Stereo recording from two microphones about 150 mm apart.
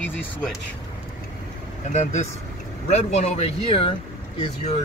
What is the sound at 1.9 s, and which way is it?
Speech, 50° left (ahead or behind).